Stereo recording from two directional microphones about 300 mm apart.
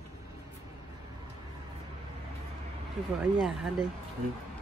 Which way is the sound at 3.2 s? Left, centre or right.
Centre.